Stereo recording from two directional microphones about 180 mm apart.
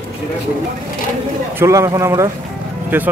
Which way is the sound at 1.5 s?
15° right (ahead or behind).